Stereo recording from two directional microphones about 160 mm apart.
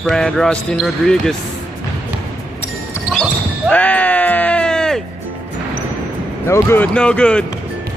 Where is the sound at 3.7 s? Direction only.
10° left (ahead or behind).